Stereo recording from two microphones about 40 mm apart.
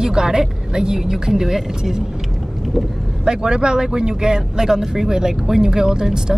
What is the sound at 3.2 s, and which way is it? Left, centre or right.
Speech, centre.